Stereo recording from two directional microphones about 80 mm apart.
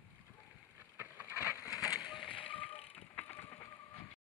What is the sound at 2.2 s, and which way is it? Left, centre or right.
Tap, centre.